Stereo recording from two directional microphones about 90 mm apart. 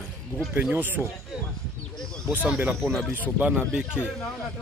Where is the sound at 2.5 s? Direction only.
25° right (ahead or behind).